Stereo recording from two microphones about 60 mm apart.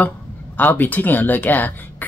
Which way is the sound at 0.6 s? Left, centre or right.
Left.